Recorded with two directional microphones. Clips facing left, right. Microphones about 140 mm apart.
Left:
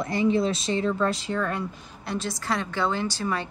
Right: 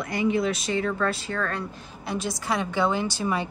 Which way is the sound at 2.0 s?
5° right (ahead or behind).